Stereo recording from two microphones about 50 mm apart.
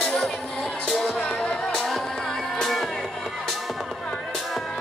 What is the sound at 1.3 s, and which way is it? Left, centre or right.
Music, centre.